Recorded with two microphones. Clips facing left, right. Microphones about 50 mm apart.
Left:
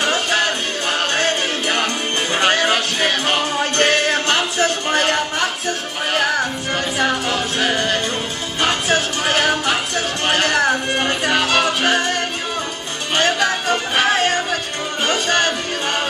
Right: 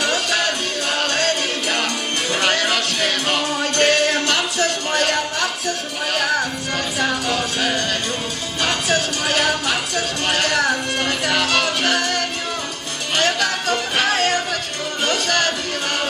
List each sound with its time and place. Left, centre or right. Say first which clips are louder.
0.0 s music: left 2 dB; left